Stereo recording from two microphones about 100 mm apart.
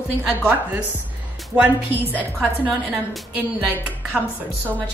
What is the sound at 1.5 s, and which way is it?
Speech, 15° right (ahead or behind).